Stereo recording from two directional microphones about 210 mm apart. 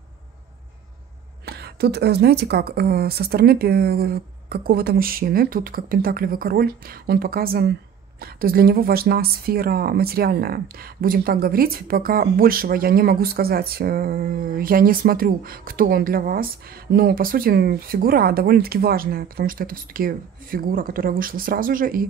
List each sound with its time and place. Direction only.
1.5 s speech: 50° right (ahead or behind)